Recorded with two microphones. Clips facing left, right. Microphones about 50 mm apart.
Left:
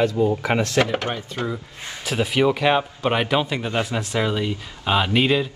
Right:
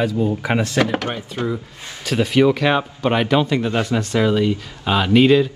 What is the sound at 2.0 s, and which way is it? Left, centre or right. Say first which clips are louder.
Speech: right 4 dB; centre.